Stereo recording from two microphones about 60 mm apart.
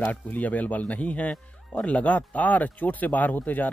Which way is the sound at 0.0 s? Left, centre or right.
Left.